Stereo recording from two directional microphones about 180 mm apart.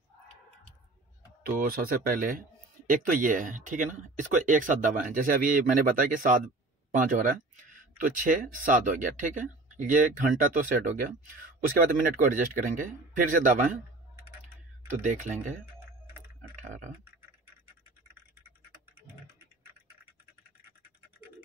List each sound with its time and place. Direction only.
1.6 s speech: 55° right (ahead or behind)
14.9 s speech: 45° right (ahead or behind)
16.6 s frog: 45° right (ahead or behind)